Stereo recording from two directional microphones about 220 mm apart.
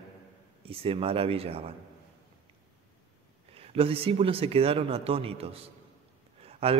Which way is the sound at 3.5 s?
25° right (ahead or behind).